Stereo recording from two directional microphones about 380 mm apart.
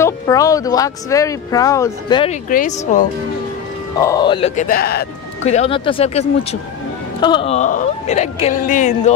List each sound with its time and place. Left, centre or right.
0.0 s speech: centre
4.0 s speech: centre